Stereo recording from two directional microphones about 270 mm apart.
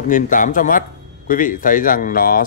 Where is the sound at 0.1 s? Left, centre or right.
Left.